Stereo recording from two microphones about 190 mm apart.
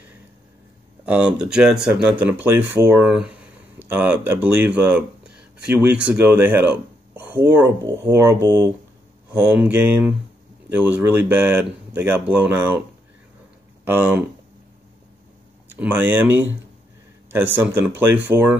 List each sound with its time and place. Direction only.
1.0 s speech: 5° right (ahead or behind)
9.4 s speech: 5° right (ahead or behind)
13.8 s speech: 10° right (ahead or behind)
15.7 s speech: 10° right (ahead or behind)
17.6 s speech: 10° right (ahead or behind)